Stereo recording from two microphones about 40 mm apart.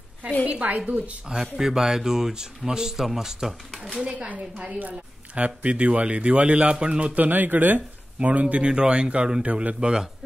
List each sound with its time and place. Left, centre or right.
0.5 s a woman's voice: right
1.3 s a man's voice: centre
4.3 s a woman's voice: right
7.2 s speech: right
8.6 s speech: right
9.8 s speech: right